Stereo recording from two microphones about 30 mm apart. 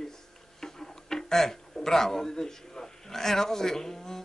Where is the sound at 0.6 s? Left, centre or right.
Centre.